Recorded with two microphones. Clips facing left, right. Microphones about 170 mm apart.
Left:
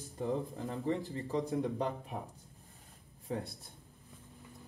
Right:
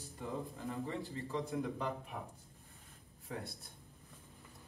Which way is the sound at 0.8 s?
35° left (ahead or behind).